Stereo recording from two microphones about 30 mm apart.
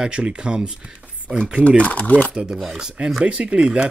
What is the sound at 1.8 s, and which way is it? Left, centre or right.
Speech, left.